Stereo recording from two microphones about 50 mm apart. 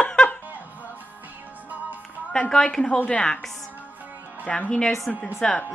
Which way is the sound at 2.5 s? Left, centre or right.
Centre.